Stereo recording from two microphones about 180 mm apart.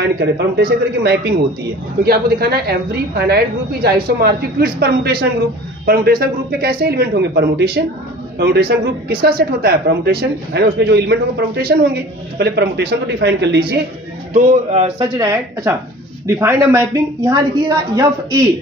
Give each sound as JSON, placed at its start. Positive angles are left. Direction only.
{"t": 0.0, "sound": "speech", "side_deg": -70}
{"t": 14.3, "sound": "speech", "side_deg": -40}
{"t": 15.0, "sound": "a woman's voice", "side_deg": -20}